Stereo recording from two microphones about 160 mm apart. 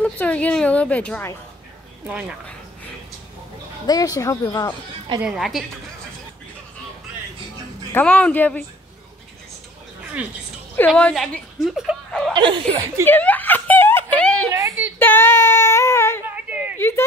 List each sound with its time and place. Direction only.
0.0 s a woman's voice: 10° left (ahead or behind)
2.0 s speech: 10° right (ahead or behind)
3.8 s speech: 25° left (ahead or behind)
5.2 s a woman's voice: centre (ahead or behind)
7.9 s a woman's voice: 10° left (ahead or behind)
10.9 s a woman's voice: 5° left (ahead or behind)
12.4 s speech: 30° right (ahead or behind)
13.0 s snicker: 10° left (ahead or behind)
14.1 s a sound: 5° left (ahead or behind)
14.5 s a sound: 15° right (ahead or behind)
15.0 s child singing: 15° left (ahead or behind)
16.3 s a sound: 10° right (ahead or behind)
16.7 s a sound: 15° left (ahead or behind)